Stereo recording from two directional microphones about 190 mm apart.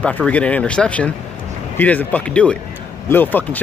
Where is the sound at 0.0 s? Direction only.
5° left (ahead or behind).